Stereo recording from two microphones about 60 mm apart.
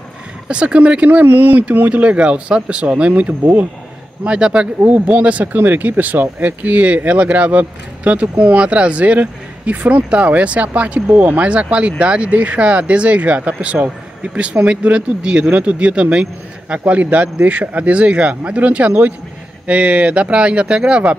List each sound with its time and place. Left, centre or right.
0.5 s speech: centre
1.2 s speech: right